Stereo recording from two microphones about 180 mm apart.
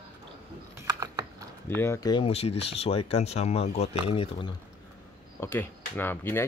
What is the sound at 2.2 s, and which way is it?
Speech, 35° left (ahead or behind).